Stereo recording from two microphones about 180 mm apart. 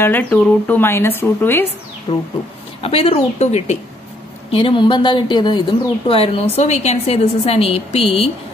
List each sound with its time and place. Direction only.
0.0 s speech: 10° left (ahead or behind)
2.1 s a woman's voice: 30° left (ahead or behind)